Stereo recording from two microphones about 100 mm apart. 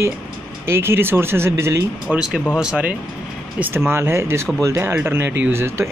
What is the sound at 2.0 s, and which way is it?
Speech, 5° right (ahead or behind).